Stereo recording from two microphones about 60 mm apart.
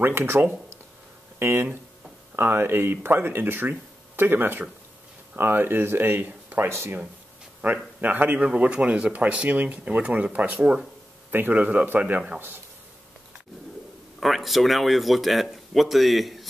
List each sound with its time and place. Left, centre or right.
0.0 s speech: right
1.4 s speech: right
6.7 s speech: right
7.6 s speech: right
14.2 s speech: centre